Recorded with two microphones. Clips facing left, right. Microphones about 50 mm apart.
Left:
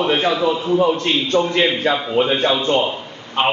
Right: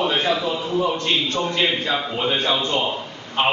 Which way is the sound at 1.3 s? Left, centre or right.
Left.